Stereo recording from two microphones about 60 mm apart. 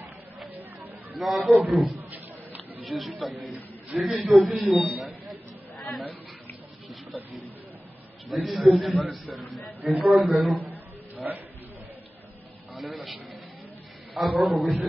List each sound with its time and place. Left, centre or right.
1.1 s a man's voice: centre
5.8 s chatter: centre
8.3 s a man's voice: centre
10.6 s a sound: right
12.7 s a man's voice: centre